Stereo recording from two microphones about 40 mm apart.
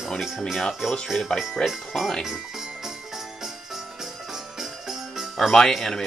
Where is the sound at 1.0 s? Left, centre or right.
Centre.